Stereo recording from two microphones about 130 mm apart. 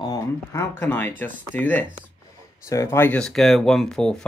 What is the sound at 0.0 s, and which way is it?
Speech, 30° left (ahead or behind).